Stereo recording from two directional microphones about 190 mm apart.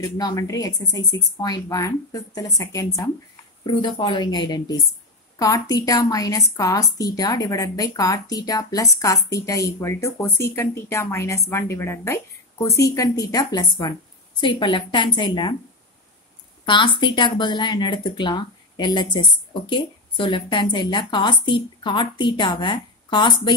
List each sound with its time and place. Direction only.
0.0 s a woman's voice: 20° left (ahead or behind)
16.6 s speech: 25° left (ahead or behind)